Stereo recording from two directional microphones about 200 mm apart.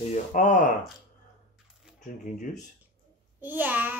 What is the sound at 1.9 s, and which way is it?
Speech, 40° left (ahead or behind).